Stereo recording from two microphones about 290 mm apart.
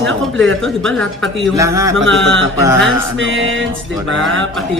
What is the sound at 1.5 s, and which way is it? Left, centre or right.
Speech, centre.